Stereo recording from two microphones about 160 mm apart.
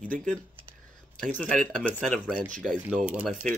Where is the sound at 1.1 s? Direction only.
5° left (ahead or behind).